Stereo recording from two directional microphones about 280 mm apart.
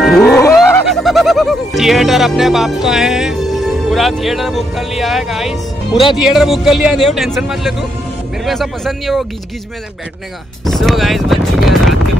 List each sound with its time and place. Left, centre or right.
0.2 s music: centre
0.6 s music: centre
6.1 s speech: centre
10.6 s speech: centre